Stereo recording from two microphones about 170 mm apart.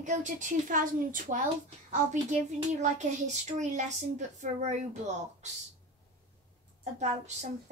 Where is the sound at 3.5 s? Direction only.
45° right (ahead or behind).